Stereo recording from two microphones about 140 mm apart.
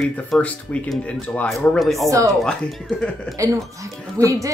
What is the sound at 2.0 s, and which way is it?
Speech, 25° right (ahead or behind).